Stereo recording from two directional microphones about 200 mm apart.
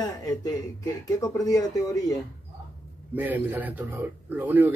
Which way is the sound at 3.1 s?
10° right (ahead or behind).